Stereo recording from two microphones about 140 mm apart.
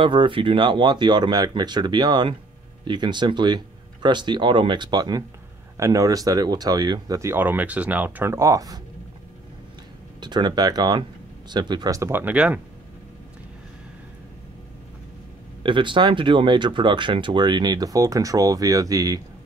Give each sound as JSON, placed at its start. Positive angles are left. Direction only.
{"t": 0.0, "sound": "speech", "side_deg": -35}
{"t": 10.2, "sound": "speech", "side_deg": -30}
{"t": 15.6, "sound": "speech", "side_deg": -35}